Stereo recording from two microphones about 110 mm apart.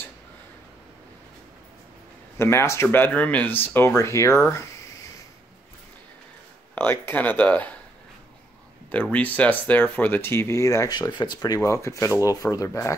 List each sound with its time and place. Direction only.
2.3 s speech: 25° left (ahead or behind)
6.7 s speech: 20° left (ahead or behind)
9.1 s speech: 15° left (ahead or behind); by 11.0 s 30° left (ahead or behind)
11.0 s speech: 40° left (ahead or behind)